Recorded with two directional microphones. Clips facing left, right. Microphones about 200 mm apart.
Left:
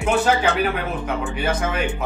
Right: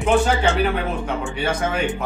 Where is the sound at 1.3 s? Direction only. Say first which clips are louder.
Right 1 dB; 5° left (ahead or behind).